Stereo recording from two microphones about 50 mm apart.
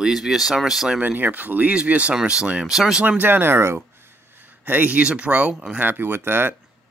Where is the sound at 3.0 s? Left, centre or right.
Right.